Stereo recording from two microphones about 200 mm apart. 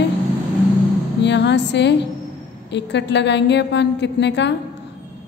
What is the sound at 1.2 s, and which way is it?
A woman's voice, 60° left (ahead or behind).